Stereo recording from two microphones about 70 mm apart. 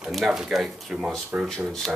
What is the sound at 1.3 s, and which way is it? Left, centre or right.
Speech, centre.